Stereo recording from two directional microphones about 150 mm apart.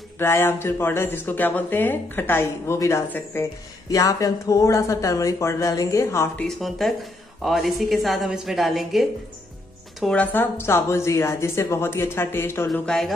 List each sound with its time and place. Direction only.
0.2 s speech: 15° left (ahead or behind)
6.4 s a woman's voice: centre (ahead or behind); by 12.6 s 15° left (ahead or behind)
12.7 s a woman's voice: 5° left (ahead or behind)